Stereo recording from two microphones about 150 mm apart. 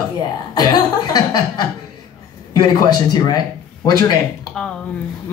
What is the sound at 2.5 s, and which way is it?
A man's voice, 25° left (ahead or behind).